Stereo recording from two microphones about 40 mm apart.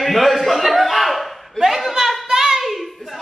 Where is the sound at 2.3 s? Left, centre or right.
Centre.